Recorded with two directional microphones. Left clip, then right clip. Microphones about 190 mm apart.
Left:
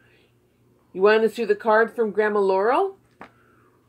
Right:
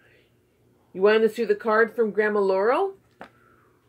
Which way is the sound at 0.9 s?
20° left (ahead or behind).